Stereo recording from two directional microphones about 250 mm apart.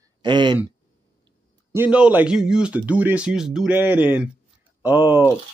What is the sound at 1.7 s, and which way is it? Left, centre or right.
Speech, centre.